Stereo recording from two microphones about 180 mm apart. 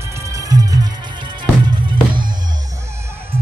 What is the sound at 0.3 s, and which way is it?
Music, 20° right (ahead or behind).